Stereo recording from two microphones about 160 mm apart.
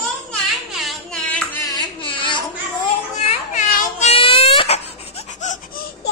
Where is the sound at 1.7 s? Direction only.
30° left (ahead or behind).